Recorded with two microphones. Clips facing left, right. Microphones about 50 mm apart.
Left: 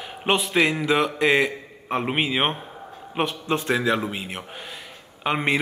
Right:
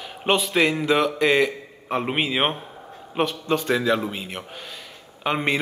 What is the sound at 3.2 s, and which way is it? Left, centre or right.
Speech, left.